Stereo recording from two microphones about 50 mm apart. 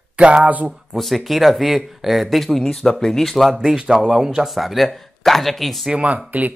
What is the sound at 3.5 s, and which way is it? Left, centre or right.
Speech, centre.